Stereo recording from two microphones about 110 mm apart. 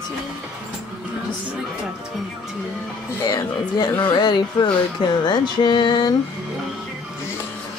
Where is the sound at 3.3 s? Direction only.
40° left (ahead or behind).